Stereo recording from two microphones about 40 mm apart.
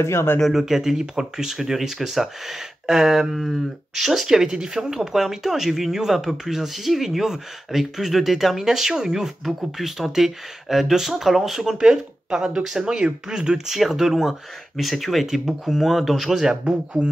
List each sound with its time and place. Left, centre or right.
0.5 s speech: centre
9.4 s speech: centre
11.8 s speech: centre
13.7 s speech: centre
14.8 s speech: centre